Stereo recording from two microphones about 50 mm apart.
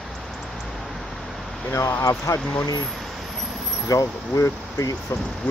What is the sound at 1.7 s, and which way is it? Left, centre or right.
Speech, left.